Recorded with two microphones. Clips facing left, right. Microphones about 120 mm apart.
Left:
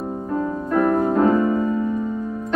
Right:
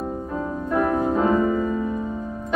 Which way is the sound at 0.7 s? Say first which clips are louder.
Left 3 dB; 5° right (ahead or behind).